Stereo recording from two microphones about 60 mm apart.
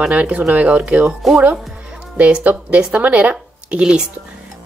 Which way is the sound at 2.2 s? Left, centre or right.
Right.